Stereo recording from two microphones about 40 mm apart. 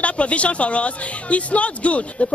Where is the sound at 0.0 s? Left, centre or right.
Left.